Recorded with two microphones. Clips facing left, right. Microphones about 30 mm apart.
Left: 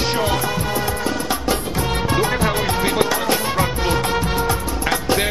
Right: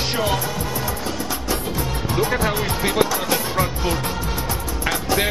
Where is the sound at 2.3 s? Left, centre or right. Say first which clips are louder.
Left 2 dB; centre.